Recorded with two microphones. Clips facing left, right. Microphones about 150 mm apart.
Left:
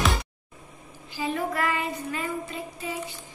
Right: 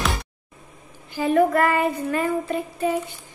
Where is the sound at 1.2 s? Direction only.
55° right (ahead or behind).